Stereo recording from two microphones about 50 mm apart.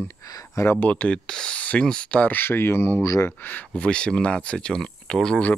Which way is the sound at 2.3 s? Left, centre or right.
Left.